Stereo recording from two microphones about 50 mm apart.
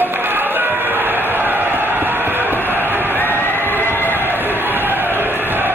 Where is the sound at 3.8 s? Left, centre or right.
Left.